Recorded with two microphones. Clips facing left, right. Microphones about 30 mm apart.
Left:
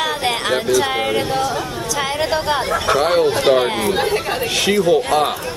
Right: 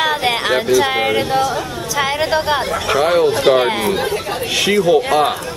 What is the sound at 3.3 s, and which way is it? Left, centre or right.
Speech, centre.